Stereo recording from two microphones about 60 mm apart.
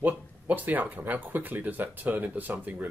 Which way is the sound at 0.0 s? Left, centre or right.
Right.